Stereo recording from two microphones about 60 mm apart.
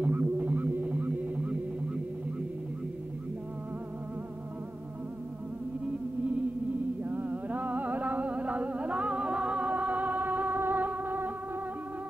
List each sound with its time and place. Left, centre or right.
0.0 s music: right
7.0 s music: right